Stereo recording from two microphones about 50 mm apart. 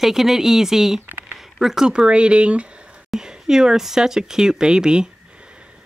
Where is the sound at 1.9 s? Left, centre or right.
Right.